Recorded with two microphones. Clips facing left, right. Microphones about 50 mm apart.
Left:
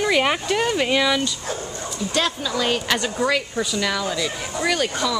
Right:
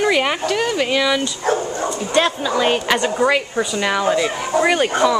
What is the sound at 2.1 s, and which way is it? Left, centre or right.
A woman's voice, right.